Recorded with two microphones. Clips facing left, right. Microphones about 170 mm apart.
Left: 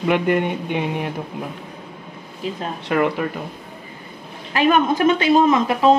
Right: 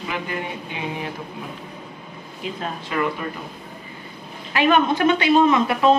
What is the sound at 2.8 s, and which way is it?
Speech, 70° left (ahead or behind).